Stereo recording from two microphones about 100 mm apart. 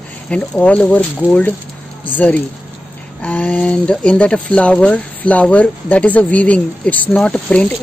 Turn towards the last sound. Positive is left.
turn(degrees=10)  # may be behind; listen again after turning